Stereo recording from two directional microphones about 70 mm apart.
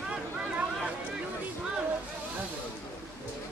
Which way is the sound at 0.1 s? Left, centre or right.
Centre.